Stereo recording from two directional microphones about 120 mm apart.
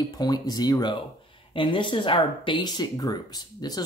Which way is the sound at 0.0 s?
35° left (ahead or behind).